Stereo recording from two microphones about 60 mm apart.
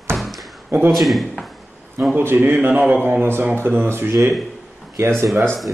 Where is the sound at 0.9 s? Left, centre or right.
Centre.